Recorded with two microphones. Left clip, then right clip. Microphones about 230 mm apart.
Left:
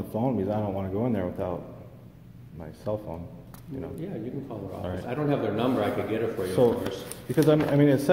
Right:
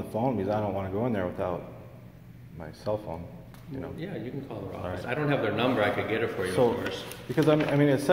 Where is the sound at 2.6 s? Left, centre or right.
Centre.